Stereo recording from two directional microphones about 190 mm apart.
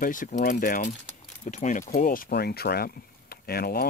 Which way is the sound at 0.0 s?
45° left (ahead or behind).